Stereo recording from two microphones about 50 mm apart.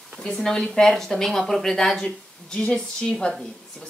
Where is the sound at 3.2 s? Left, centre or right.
Left.